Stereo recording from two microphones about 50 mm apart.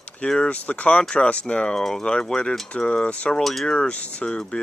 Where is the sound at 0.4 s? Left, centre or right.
Left.